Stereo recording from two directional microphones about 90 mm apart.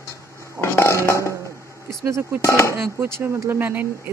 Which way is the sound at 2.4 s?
35° left (ahead or behind).